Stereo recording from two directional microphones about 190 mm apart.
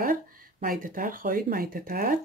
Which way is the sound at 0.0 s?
50° right (ahead or behind).